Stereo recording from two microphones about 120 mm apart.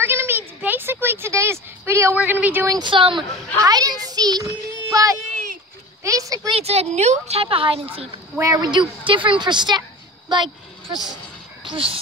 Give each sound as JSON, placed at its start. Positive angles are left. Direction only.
{"t": 0.0, "sound": "speech", "side_deg": -20}
{"t": 2.7, "sound": "a woman's voice", "side_deg": -40}
{"t": 3.6, "sound": "a woman's voice", "side_deg": -30}
{"t": 6.5, "sound": "a woman's voice", "side_deg": -60}
{"t": 8.4, "sound": "a woman's voice", "side_deg": -30}
{"t": 10.3, "sound": "a sound", "side_deg": -40}
{"t": 11.7, "sound": "a woman's voice", "side_deg": -50}